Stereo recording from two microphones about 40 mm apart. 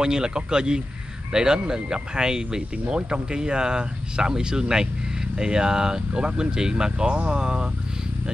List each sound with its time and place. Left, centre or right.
0.0 s speech: centre